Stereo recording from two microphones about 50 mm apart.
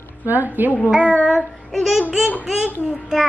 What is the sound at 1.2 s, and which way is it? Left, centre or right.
Child singing, centre.